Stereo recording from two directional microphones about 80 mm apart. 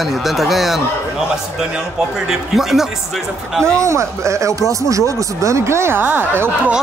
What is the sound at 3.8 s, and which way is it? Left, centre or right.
Speech, right.